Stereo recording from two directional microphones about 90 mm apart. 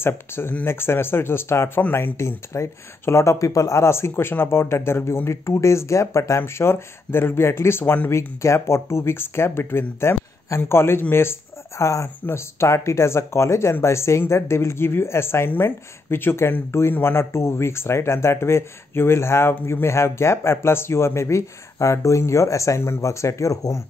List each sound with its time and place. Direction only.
0.0 s speech: 25° left (ahead or behind)